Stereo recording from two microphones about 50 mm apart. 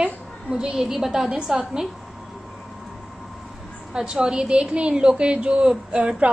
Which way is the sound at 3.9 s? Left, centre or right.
Centre.